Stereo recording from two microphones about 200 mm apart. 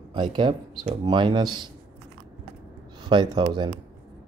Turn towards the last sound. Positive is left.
turn(degrees=-20)  # may be behind; listen again after turning